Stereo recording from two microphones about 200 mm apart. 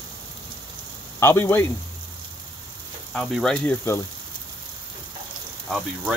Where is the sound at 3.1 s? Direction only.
Centre (ahead or behind).